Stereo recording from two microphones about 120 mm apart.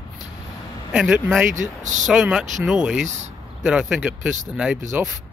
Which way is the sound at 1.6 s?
90° right.